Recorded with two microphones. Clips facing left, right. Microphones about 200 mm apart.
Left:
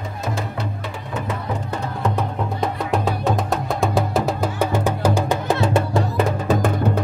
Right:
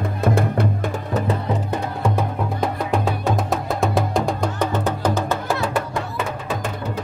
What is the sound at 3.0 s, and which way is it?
Music, centre (ahead or behind).